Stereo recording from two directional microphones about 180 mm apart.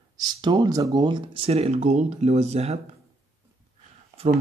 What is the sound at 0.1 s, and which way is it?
Speech, 25° right (ahead or behind).